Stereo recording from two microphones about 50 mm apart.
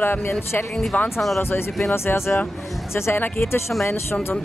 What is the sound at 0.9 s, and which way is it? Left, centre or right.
Speech, left.